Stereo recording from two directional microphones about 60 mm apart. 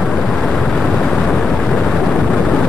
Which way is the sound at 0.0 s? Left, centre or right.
Centre.